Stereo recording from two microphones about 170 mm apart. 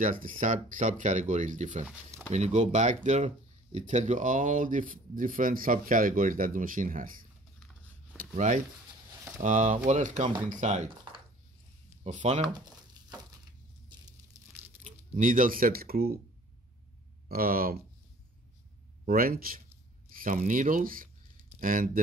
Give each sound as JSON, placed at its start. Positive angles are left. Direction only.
{"t": 0.0, "sound": "speech", "side_deg": -55}
{"t": 8.2, "sound": "speech", "side_deg": -45}
{"t": 12.0, "sound": "speech", "side_deg": -45}
{"t": 13.8, "sound": "a sound", "side_deg": -20}
{"t": 14.8, "sound": "speech", "side_deg": -50}
{"t": 17.3, "sound": "speech", "side_deg": -60}
{"t": 19.0, "sound": "speech", "side_deg": -60}
{"t": 20.2, "sound": "speech", "side_deg": -50}